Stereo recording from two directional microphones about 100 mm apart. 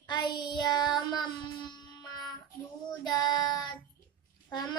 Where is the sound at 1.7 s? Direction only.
45° left (ahead or behind).